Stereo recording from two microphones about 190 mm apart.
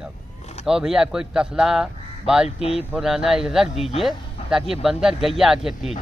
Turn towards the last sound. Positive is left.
turn(degrees=0)  # may be behind; listen again after turning